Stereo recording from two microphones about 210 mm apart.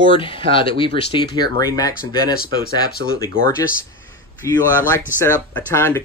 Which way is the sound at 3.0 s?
60° right (ahead or behind).